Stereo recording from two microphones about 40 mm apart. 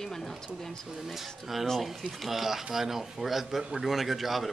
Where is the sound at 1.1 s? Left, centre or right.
Centre.